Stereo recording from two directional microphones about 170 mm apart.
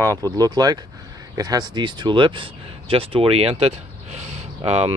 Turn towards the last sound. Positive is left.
turn(degrees=-35)  # may be behind; listen again after turning